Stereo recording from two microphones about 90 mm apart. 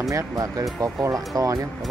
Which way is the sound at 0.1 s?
40° right (ahead or behind).